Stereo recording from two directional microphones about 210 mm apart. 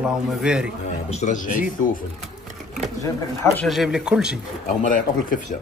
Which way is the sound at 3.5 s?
Centre (ahead or behind).